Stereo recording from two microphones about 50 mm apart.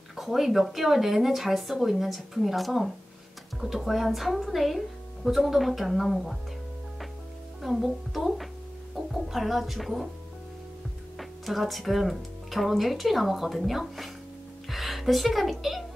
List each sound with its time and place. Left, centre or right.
0.1 s speech: centre
7.6 s speech: centre
11.1 s speech: centre